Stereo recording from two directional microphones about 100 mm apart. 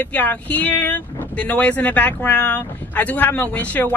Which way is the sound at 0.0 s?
15° left (ahead or behind).